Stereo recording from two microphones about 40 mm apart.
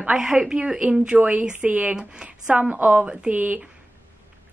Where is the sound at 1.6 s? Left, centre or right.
Right.